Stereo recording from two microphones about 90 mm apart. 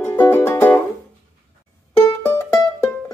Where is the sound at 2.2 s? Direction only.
25° left (ahead or behind).